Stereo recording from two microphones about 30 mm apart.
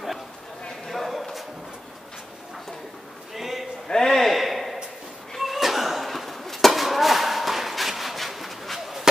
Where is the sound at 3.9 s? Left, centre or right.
Centre.